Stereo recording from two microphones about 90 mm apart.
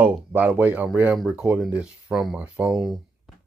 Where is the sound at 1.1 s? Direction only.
5° right (ahead or behind).